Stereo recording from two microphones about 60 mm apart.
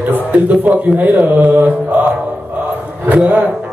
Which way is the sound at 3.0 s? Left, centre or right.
Right.